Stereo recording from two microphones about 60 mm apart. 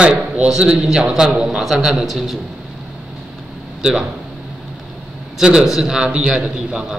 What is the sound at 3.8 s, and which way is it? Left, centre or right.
Speech, centre.